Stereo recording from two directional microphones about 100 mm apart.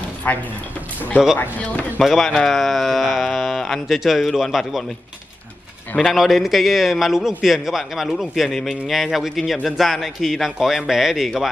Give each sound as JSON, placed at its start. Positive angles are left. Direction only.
{"t": 0.2, "sound": "speech", "side_deg": 20}
{"t": 2.0, "sound": "a man's voice", "side_deg": 0}
{"t": 5.9, "sound": "a man's voice", "side_deg": 0}